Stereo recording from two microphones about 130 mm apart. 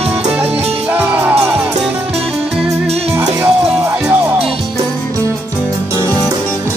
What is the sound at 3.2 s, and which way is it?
Music, 20° right (ahead or behind).